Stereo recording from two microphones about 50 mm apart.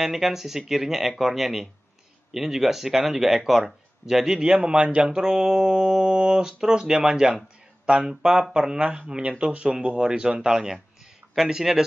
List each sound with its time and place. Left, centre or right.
0.0 s speech: centre